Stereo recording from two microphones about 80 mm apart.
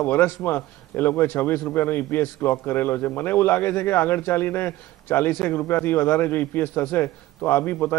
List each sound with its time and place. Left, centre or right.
0.0 s a man's voice: left